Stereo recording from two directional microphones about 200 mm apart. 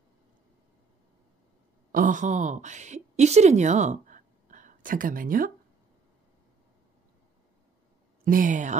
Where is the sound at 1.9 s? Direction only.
40° right (ahead or behind).